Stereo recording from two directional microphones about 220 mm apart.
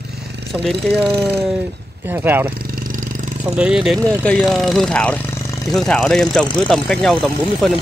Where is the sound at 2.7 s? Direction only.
40° right (ahead or behind).